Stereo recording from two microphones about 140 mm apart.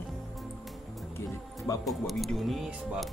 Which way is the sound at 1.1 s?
25° left (ahead or behind).